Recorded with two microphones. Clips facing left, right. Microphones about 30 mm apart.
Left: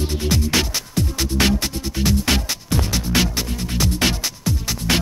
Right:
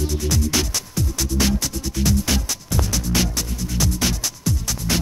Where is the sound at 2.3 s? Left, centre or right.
Left.